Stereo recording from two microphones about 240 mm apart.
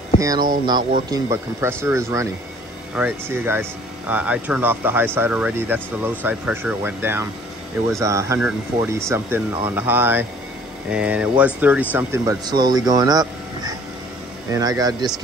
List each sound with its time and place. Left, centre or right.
0.2 s speech: centre